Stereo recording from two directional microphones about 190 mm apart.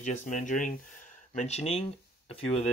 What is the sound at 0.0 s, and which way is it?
Speech, 40° left (ahead or behind).